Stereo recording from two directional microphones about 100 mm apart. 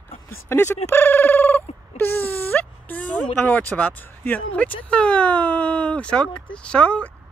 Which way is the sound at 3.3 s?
15° left (ahead or behind).